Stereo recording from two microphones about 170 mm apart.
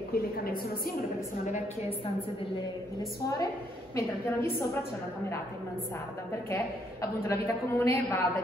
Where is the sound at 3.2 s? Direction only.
20° left (ahead or behind).